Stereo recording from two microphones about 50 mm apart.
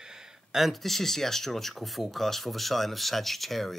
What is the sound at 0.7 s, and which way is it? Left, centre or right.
Speech, centre.